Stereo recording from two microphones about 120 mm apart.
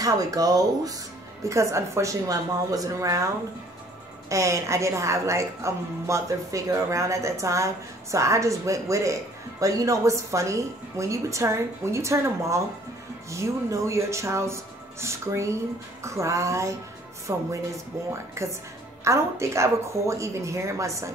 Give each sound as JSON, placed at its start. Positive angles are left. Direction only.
{"t": 0.0, "sound": "a woman's voice", "side_deg": -30}
{"t": 4.3, "sound": "a woman's voice", "side_deg": -25}